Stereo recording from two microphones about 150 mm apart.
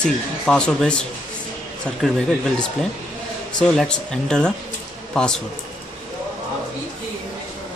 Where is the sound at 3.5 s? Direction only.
5° left (ahead or behind).